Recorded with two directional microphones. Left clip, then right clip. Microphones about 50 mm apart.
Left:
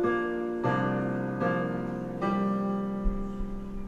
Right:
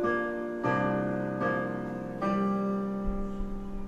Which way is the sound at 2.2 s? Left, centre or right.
Centre.